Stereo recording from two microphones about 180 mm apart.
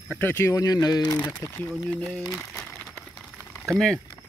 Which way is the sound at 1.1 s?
10° left (ahead or behind).